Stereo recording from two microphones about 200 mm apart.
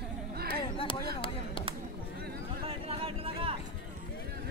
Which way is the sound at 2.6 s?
30° right (ahead or behind).